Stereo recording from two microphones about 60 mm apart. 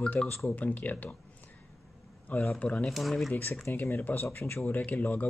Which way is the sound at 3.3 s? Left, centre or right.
Left.